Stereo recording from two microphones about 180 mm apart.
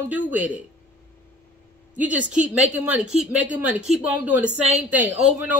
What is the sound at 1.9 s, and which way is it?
A man's voice, 10° right (ahead or behind).